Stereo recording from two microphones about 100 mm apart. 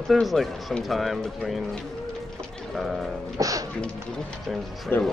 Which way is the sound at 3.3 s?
35° right (ahead or behind).